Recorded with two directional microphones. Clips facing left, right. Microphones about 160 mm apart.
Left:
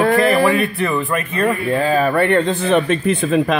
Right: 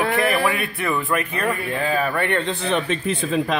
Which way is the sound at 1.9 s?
40° left (ahead or behind).